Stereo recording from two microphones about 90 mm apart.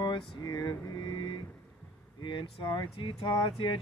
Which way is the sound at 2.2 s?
65° left (ahead or behind).